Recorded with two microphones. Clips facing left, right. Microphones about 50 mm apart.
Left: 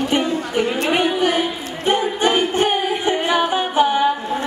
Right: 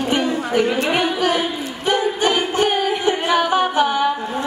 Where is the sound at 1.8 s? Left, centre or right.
Left.